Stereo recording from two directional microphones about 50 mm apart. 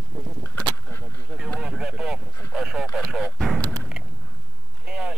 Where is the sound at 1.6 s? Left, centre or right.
Centre.